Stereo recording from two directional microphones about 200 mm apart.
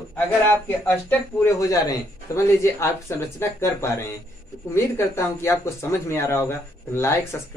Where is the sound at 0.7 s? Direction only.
10° left (ahead or behind).